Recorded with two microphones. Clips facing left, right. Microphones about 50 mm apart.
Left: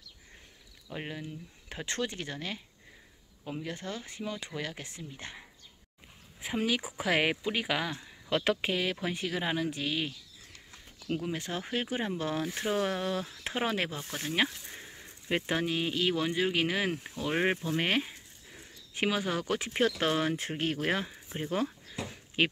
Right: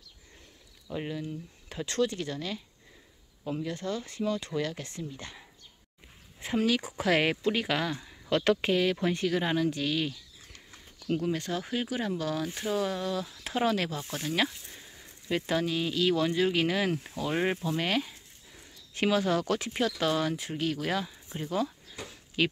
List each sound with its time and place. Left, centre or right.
0.9 s speech: centre
3.6 s speech: left
6.4 s speech: centre
11.5 s speech: left
13.4 s speech: left
14.2 s a sound: left
15.4 s speech: left
17.7 s a sound: left
19.0 s speech: centre
19.8 s speech: left